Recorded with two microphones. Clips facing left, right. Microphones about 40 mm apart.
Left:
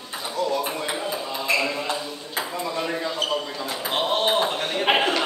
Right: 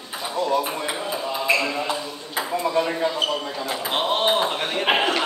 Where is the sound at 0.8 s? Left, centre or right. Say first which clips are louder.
Right 1 dB; centre.